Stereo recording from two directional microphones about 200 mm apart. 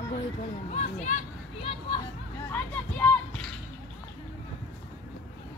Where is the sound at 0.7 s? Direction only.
35° left (ahead or behind).